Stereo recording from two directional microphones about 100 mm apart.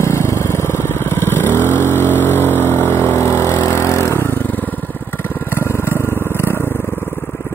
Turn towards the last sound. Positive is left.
turn(degrees=25)  # may be behind; listen again after turning